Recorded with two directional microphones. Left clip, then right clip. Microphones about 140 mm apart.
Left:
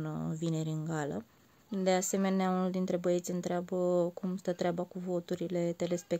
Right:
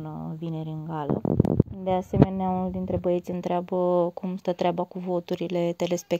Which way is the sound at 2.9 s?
5° right (ahead or behind).